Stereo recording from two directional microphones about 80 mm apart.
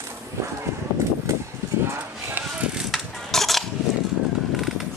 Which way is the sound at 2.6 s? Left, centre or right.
Centre.